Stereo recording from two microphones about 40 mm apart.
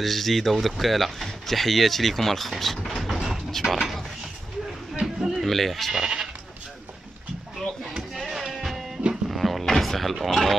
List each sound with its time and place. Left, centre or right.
0.0 s speech: centre
2.6 s a sound: centre
3.6 s speech: centre
5.0 s a sound: centre
5.5 s speech: centre
5.9 s speech: centre
8.1 s music: centre
10.2 s speech: centre